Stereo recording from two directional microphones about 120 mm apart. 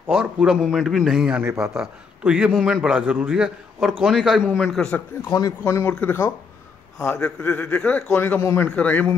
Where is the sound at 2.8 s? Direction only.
10° right (ahead or behind).